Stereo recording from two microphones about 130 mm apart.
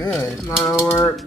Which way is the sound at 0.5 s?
5° right (ahead or behind).